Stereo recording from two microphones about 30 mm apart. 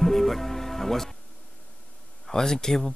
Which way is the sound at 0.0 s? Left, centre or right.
Centre.